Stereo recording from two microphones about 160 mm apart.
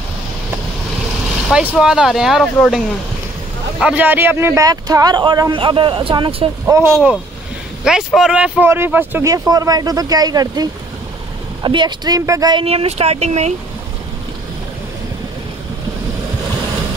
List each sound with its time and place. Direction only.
1.8 s speech: 5° right (ahead or behind)
3.8 s speech: 10° right (ahead or behind); by 6.5 s 30° right (ahead or behind)
6.6 s speech: 15° right (ahead or behind)
7.8 s speech: 5° right (ahead or behind); by 12.6 s 25° right (ahead or behind)
12.6 s speech: 40° right (ahead or behind)